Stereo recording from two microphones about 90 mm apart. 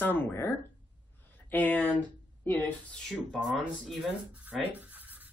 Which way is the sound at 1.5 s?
15° left (ahead or behind).